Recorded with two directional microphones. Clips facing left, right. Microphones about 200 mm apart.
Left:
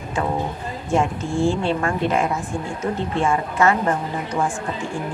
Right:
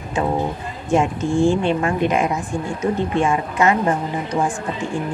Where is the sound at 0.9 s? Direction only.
15° right (ahead or behind).